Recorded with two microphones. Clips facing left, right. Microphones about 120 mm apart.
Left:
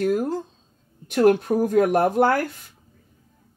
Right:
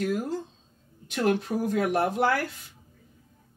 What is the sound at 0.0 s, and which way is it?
Speech, 50° left (ahead or behind).